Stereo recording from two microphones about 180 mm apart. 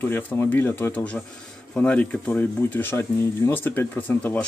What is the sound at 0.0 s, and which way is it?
Speech, 10° left (ahead or behind).